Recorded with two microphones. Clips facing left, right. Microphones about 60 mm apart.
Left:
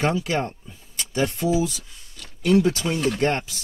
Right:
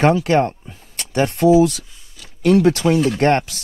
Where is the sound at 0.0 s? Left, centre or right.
Right.